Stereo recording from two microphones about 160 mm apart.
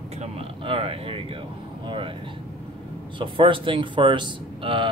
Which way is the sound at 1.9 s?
30° right (ahead or behind).